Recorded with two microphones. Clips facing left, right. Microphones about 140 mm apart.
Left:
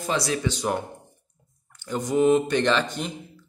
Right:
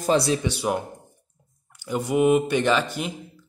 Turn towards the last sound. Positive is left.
turn(degrees=-10)  # may be behind; listen again after turning